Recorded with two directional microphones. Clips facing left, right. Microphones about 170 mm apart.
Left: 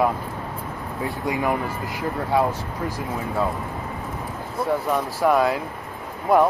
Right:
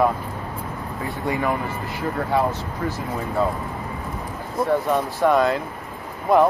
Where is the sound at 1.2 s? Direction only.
10° left (ahead or behind).